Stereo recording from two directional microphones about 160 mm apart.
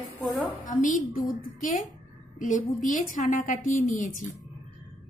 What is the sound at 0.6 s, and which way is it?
A woman's voice, 55° left (ahead or behind).